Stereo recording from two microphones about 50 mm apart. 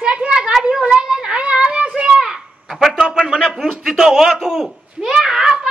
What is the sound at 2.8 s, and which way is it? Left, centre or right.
A man's voice, centre.